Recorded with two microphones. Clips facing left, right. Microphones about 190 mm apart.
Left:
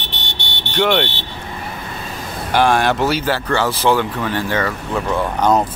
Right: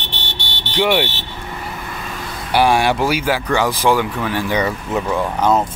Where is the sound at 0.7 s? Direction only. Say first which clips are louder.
Even; 10° right (ahead or behind).